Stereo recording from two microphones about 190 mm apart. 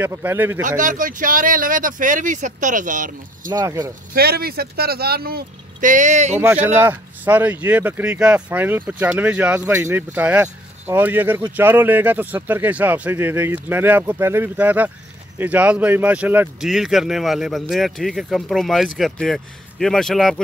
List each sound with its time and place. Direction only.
0.0 s speech: 10° right (ahead or behind)
0.7 s speech: 45° right (ahead or behind)
3.4 s speech: 20° right (ahead or behind)
4.1 s speech: 55° right (ahead or behind); by 6.3 s 40° right (ahead or behind)
6.3 s speech: 10° right (ahead or behind)